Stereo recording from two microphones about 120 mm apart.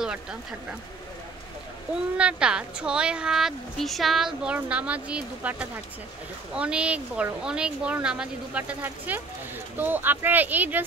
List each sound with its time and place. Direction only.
0.0 s speech: 5° right (ahead or behind)
2.1 s speech: 10° right (ahead or behind)